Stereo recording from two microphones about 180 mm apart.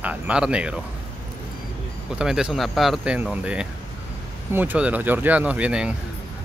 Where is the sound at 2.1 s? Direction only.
5° right (ahead or behind).